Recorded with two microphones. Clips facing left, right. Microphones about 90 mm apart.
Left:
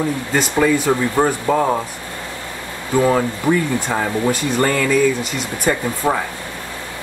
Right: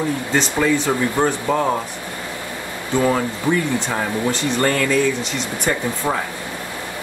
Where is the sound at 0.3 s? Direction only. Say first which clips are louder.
Left 2 dB; 10° left (ahead or behind).